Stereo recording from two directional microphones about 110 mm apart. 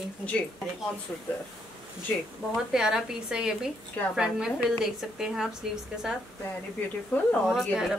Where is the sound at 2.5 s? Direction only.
5° right (ahead or behind).